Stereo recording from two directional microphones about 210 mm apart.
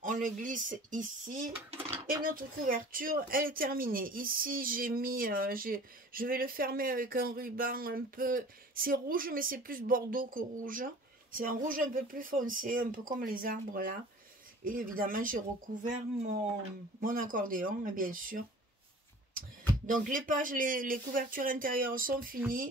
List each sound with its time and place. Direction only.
0.0 s speech: 40° right (ahead or behind)
2.0 s speech: 40° right (ahead or behind)
19.9 s speech: 40° right (ahead or behind)